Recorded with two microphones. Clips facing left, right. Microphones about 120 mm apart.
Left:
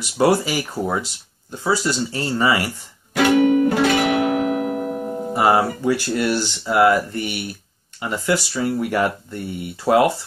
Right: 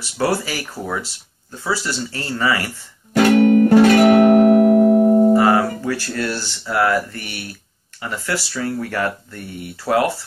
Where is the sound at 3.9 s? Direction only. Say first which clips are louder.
Right 8 dB; 45° right (ahead or behind).